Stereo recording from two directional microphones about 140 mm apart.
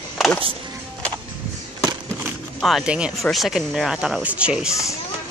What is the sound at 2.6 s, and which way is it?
Speech, centre (ahead or behind).